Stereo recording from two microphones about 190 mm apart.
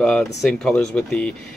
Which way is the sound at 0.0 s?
Centre (ahead or behind).